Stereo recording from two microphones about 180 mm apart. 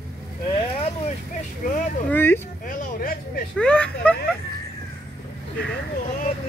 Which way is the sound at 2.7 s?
55° left (ahead or behind).